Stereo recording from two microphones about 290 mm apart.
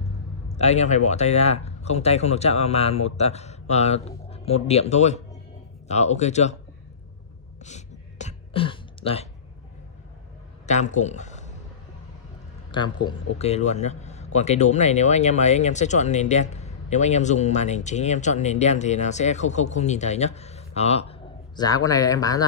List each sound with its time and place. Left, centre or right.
0.5 s a man's voice: left
7.6 s a sound: left
10.7 s speech: left
12.7 s a man's voice: centre